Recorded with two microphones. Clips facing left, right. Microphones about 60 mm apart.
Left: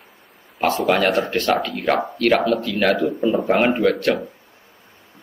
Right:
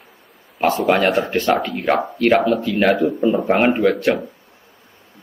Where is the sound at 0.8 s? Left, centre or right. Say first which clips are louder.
Right 1 dB; centre.